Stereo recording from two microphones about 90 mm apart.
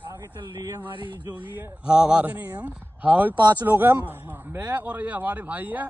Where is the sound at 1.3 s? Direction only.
20° right (ahead or behind).